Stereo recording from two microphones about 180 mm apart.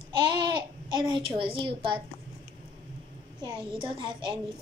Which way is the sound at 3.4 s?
30° right (ahead or behind).